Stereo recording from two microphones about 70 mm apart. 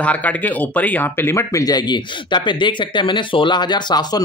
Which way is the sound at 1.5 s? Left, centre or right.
Left.